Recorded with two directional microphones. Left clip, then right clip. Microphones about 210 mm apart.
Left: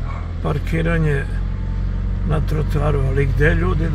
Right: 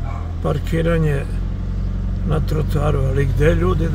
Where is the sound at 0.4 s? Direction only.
15° right (ahead or behind).